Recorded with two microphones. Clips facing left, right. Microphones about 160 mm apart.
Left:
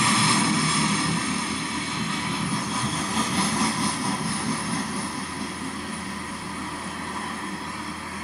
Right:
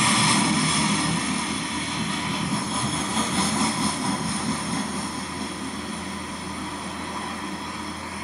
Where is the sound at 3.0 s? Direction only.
20° right (ahead or behind).